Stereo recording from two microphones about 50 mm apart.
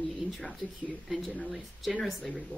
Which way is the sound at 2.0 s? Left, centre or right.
Centre.